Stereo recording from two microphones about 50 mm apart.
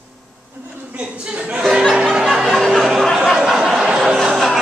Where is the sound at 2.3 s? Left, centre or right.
Centre.